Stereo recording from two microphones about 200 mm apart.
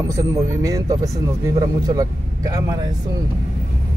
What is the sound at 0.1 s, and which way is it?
Speech, 15° right (ahead or behind).